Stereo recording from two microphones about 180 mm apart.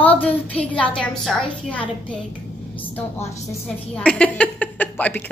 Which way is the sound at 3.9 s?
5° left (ahead or behind).